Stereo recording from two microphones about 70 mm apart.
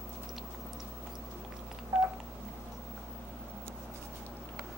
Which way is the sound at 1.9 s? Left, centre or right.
Centre.